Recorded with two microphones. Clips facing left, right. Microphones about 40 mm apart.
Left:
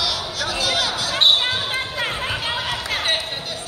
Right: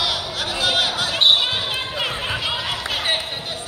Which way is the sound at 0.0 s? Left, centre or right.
Right.